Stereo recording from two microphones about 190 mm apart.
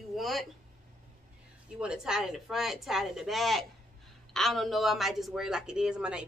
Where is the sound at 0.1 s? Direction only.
Centre (ahead or behind).